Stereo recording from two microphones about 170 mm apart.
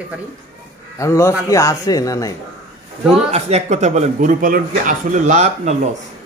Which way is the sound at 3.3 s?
40° right (ahead or behind).